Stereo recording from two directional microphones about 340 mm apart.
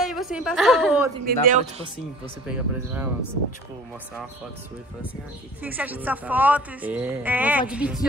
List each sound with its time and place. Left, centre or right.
0.0 s a woman's voice: centre
1.2 s speech: right
2.4 s speech: centre
5.6 s speech: centre